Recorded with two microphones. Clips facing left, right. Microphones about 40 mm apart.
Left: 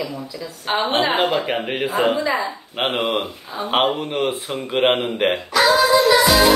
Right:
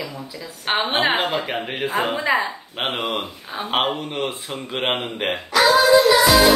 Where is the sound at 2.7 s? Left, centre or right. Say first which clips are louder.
Left 4 dB; centre.